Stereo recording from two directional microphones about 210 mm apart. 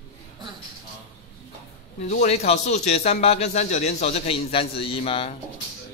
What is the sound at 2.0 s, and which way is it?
Speech, 30° left (ahead or behind).